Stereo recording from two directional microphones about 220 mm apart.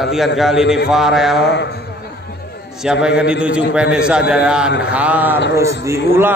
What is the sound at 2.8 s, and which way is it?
A man's voice, 5° right (ahead or behind).